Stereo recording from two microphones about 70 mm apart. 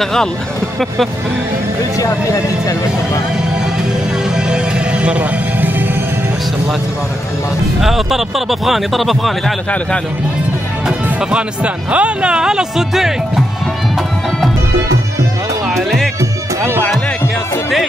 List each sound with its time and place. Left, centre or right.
0.0 s speech: centre
2.0 s speech: left
4.3 s music: centre
7.8 s speech: centre
10.9 s speech: centre
15.7 s music: centre